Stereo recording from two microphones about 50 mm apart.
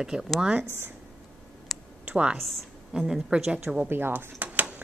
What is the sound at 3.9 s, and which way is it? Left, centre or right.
Speech, right.